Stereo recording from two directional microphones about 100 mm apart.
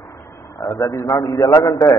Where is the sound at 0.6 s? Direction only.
30° left (ahead or behind).